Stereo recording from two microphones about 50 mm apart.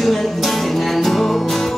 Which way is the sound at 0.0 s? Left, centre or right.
Centre.